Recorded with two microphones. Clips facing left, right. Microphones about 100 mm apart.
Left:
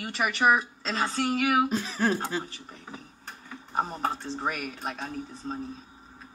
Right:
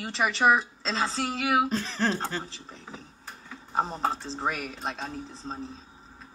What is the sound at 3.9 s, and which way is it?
Speech, 25° right (ahead or behind).